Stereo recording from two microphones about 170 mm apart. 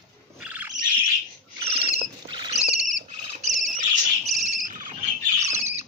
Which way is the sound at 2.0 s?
30° right (ahead or behind).